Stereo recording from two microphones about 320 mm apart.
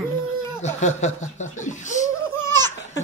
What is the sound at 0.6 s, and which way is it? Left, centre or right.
Speech, left.